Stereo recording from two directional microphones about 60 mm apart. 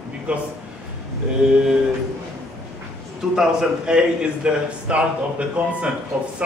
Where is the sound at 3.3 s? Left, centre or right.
Centre.